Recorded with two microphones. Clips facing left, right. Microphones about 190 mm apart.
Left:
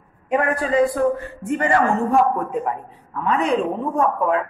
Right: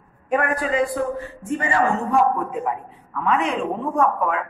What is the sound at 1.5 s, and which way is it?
Speech, 50° left (ahead or behind).